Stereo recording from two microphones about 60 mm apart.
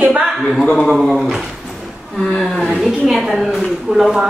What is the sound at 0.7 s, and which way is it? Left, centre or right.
Speech, centre.